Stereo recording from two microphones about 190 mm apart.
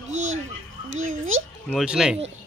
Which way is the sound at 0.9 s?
90° right.